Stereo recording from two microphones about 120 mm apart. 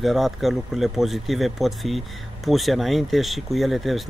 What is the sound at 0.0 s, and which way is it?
Speech, centre (ahead or behind).